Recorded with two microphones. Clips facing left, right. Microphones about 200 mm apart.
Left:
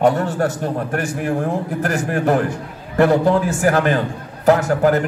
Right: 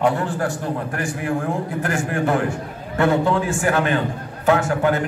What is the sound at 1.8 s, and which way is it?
A man's voice, 40° left (ahead or behind).